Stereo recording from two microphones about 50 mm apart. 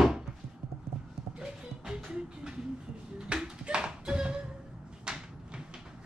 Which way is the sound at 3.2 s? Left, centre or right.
Centre.